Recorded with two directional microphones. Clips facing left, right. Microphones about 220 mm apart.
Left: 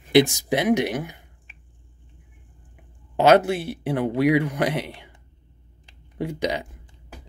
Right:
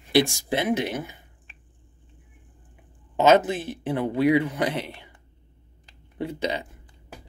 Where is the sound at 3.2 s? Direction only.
10° left (ahead or behind).